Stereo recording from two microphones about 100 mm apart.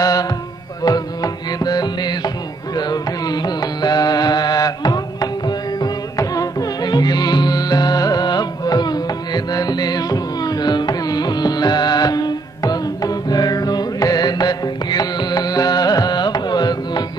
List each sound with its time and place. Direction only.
0.0 s carnatic music: 40° left (ahead or behind)
0.8 s music: 40° left (ahead or behind)